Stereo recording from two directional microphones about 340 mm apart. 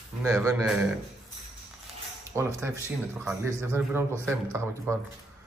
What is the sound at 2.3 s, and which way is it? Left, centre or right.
A man's voice, centre.